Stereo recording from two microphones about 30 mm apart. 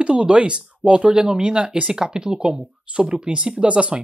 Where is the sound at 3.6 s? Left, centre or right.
Right.